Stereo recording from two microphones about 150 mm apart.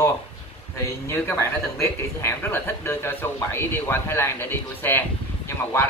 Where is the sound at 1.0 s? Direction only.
15° left (ahead or behind).